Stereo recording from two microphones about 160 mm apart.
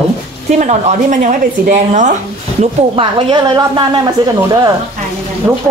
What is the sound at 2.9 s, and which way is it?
A woman's voice, 30° right (ahead or behind).